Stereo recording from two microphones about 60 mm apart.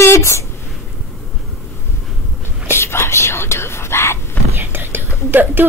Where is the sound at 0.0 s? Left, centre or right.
Left.